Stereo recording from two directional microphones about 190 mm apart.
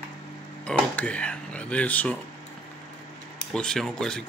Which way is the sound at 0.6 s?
5° left (ahead or behind).